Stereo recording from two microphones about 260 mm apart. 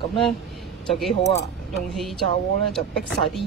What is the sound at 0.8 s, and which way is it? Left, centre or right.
Speech, centre.